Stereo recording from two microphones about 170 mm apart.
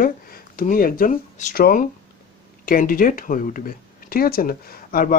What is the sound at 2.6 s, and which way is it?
Speech, 55° left (ahead or behind).